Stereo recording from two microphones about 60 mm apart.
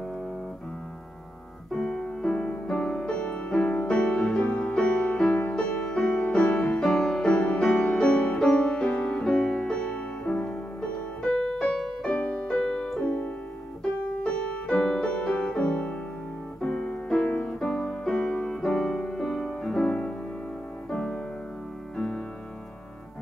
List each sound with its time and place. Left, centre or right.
1.7 s music: centre; by 6.3 s left
6.3 s music: centre
11.2 s music: centre
13.0 s piano: left
14.2 s music: centre
14.7 s music: centre
19.9 s music: centre